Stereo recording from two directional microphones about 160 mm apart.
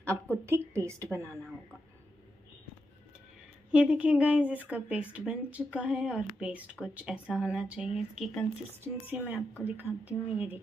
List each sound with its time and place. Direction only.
0.0 s a woman's voice: 15° right (ahead or behind)
3.7 s speech: 5° right (ahead or behind)
8.8 s speech: 15° right (ahead or behind)